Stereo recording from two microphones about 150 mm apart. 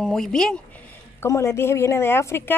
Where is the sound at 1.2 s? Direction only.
20° left (ahead or behind).